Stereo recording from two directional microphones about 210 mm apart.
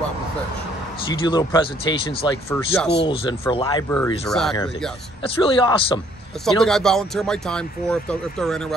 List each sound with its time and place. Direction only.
1.2 s speech: 20° left (ahead or behind)
2.5 s speech: 10° left (ahead or behind)
3.1 s speech: 25° left (ahead or behind)
3.9 s speech: 5° left (ahead or behind)
5.2 s speech: 25° left (ahead or behind)
6.4 s speech: centre (ahead or behind)